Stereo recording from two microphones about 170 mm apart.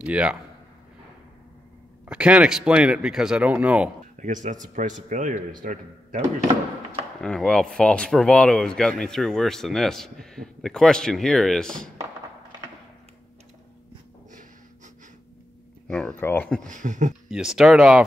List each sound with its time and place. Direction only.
0.0 s a man's voice: 5° right (ahead or behind)
2.0 s speech: 5° right (ahead or behind)
4.2 s speech: 45° right (ahead or behind)
7.2 s speech: 5° left (ahead or behind)
15.9 s speech: 5° left (ahead or behind)
16.6 s speech: 45° right (ahead or behind)
17.3 s speech: 5° right (ahead or behind)